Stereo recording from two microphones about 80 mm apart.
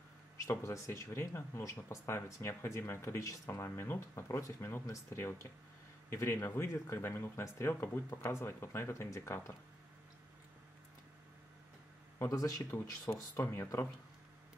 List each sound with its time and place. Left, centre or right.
0.5 s speech: left
12.2 s speech: left